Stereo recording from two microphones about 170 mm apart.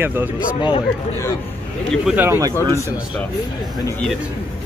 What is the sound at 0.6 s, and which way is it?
Speech, 30° left (ahead or behind).